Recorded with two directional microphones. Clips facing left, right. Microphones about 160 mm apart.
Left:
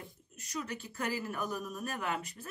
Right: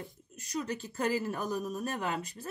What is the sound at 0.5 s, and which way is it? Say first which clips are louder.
Speech: right 4 dB; 35° right (ahead or behind).